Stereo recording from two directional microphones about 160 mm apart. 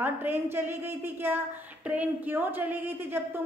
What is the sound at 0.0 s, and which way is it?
A woman's voice, 10° right (ahead or behind).